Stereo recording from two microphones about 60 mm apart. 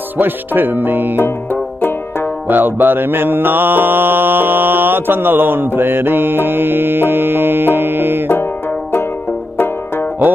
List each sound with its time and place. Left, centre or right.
0.2 s mantra: right
1.2 s music: left
2.4 s mantra: right
5.8 s music: right